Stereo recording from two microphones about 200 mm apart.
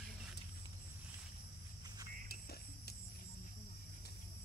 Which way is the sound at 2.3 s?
50° left (ahead or behind).